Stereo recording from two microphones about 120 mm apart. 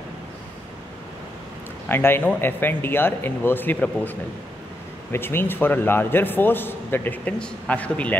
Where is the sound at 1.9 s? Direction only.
20° left (ahead or behind).